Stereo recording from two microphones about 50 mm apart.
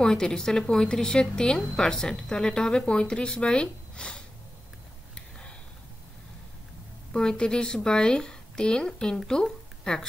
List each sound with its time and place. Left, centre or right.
0.0 s a woman's voice: centre
7.1 s a woman's voice: centre